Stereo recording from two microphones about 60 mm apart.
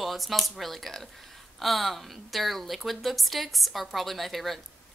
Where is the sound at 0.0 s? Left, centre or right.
Centre.